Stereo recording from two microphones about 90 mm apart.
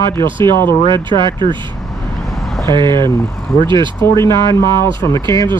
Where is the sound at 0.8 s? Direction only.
60° right (ahead or behind).